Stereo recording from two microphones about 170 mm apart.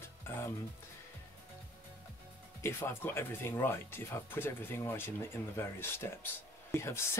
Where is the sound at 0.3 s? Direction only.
15° left (ahead or behind).